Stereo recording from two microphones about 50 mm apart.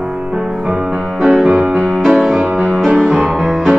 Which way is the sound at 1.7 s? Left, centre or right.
Right.